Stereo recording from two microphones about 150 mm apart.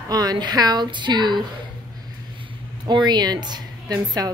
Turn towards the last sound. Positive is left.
turn(degrees=-25)  # may be behind; listen again after turning